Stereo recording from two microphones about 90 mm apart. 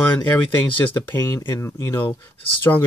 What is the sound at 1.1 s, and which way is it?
Speech, 30° left (ahead or behind).